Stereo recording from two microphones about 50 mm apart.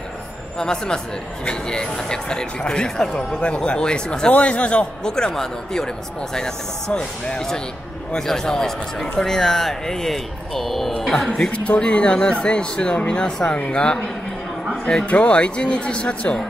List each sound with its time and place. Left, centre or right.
0.6 s speech: centre
4.3 s speech: left
5.1 s speech: centre
11.5 s speech: left
15.0 s speech: left